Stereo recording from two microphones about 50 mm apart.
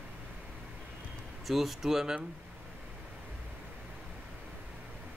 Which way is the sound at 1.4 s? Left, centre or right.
Centre.